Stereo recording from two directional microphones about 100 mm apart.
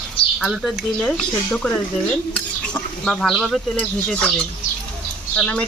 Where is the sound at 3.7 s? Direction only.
10° left (ahead or behind).